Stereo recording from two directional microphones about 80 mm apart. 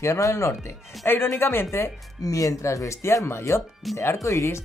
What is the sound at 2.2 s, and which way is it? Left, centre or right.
Speech, left.